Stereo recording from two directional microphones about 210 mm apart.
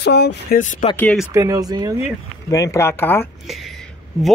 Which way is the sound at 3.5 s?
Centre (ahead or behind).